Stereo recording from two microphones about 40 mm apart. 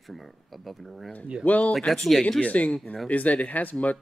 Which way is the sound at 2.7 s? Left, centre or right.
Left.